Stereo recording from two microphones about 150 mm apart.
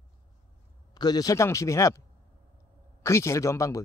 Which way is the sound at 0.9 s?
25° left (ahead or behind).